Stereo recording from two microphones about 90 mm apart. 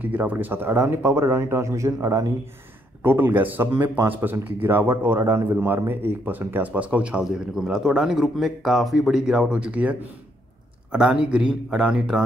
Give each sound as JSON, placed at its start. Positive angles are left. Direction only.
{"t": 0.0, "sound": "speech", "side_deg": -20}
{"t": 3.0, "sound": "a man's voice", "side_deg": -25}